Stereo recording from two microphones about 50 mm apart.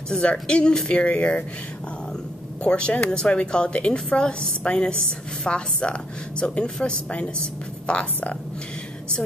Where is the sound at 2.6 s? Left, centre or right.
Left.